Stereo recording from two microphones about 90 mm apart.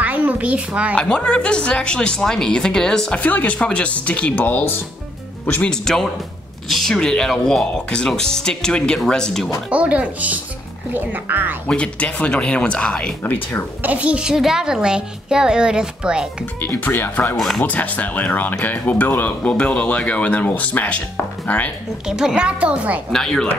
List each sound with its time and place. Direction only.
0.0 s a sound: 20° right (ahead or behind)
0.9 s speech: 10° left (ahead or behind)
9.7 s a child's voice: 15° right (ahead or behind)
11.6 s speech: 10° left (ahead or behind)
13.2 s speech: 20° left (ahead or behind)
13.8 s a child's voice: 15° right (ahead or behind)
16.6 s speech: 20° left (ahead or behind)
22.0 s a child's voice: 5° right (ahead or behind)
23.1 s speech: 5° left (ahead or behind)